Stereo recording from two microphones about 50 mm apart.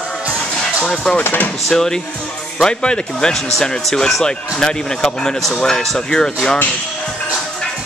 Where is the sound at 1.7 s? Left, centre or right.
Centre.